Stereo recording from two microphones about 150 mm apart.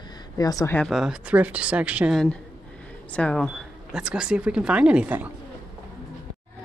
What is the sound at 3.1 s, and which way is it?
Speech, 10° left (ahead or behind).